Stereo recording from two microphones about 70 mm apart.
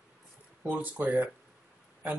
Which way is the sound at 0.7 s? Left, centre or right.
Right.